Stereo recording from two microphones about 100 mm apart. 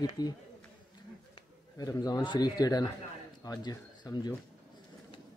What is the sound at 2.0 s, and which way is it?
A man's voice, 50° left (ahead or behind).